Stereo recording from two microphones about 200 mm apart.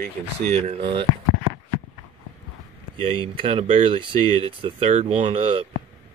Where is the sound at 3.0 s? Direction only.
25° right (ahead or behind).